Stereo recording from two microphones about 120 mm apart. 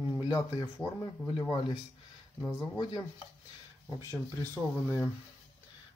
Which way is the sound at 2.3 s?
15° left (ahead or behind).